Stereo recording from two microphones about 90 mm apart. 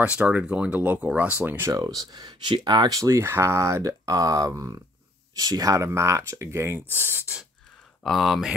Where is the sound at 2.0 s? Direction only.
55° right (ahead or behind).